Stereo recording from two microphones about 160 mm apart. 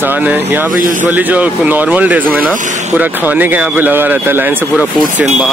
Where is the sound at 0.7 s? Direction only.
60° right (ahead or behind).